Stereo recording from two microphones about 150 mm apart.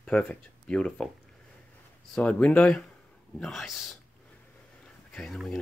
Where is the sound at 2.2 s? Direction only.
10° left (ahead or behind).